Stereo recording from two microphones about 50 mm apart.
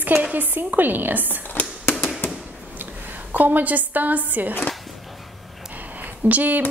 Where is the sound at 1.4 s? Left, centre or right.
Left.